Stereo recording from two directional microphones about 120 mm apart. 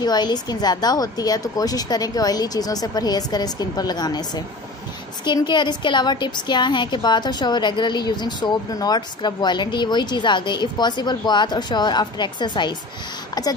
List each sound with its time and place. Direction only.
0.0 s a woman's voice: 35° left (ahead or behind)